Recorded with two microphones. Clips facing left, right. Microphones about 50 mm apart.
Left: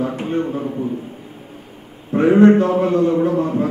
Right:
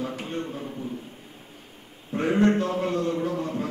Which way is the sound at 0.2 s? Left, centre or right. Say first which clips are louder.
Left 11 dB; centre.